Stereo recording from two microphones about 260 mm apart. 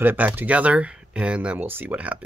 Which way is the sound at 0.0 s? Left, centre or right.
Centre.